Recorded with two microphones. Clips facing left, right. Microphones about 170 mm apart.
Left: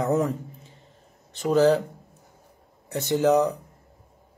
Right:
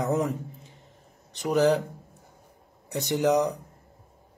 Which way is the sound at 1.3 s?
15° right (ahead or behind).